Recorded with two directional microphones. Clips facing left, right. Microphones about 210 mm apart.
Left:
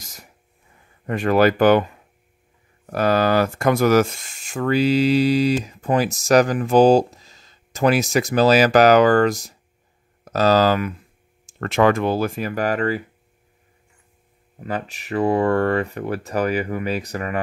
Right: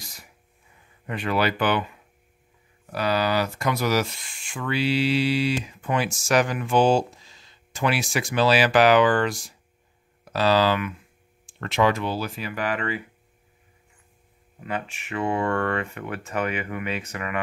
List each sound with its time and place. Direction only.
0.0 s a sound: 45° left (ahead or behind)
1.0 s speech: 45° left (ahead or behind)
2.9 s speech: 50° left (ahead or behind)
14.6 s speech: 40° left (ahead or behind)